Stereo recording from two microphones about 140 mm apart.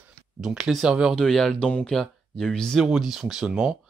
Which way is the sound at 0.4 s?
5° right (ahead or behind).